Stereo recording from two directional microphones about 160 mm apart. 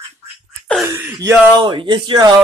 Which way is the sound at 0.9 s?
15° right (ahead or behind).